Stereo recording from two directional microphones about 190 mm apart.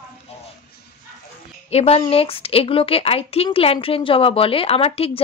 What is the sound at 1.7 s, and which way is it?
A woman's voice, 35° left (ahead or behind).